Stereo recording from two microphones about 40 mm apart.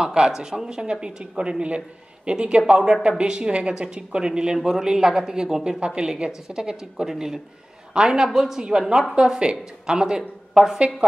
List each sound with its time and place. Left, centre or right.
0.0 s a woman's voice: right